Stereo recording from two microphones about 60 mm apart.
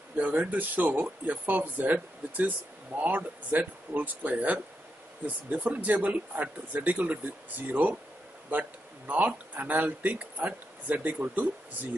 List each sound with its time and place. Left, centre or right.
0.4 s speech: right